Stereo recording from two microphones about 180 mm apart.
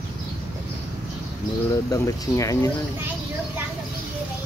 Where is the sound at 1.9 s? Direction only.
15° left (ahead or behind).